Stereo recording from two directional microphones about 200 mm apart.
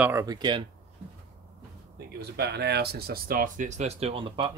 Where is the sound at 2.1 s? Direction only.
55° right (ahead or behind); by 4.5 s 25° right (ahead or behind).